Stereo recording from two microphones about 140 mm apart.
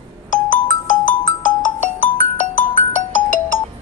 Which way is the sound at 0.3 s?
65° left (ahead or behind).